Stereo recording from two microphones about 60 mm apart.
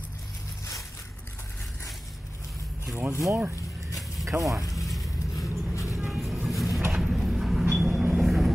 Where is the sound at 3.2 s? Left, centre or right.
Right.